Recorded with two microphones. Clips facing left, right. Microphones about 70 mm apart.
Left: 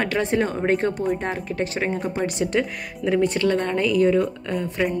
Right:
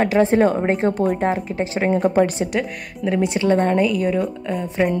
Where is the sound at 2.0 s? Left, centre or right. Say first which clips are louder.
Right 9 dB; right.